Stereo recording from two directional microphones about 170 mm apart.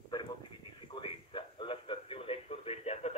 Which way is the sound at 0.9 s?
30° left (ahead or behind).